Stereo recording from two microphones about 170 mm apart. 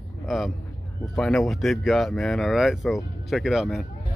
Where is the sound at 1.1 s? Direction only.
5° left (ahead or behind).